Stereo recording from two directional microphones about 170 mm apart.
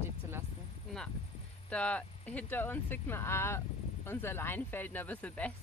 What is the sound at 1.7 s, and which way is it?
Speech, 5° left (ahead or behind).